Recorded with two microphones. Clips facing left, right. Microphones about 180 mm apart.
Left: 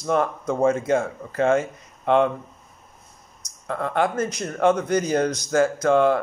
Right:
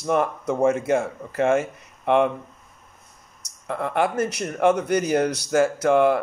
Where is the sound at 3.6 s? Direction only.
10° right (ahead or behind).